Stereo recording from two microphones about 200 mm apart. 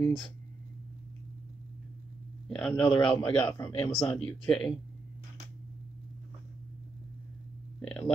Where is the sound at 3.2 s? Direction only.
10° left (ahead or behind).